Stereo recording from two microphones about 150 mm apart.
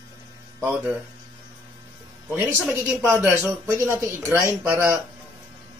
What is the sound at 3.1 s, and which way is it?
Speech, 15° right (ahead or behind).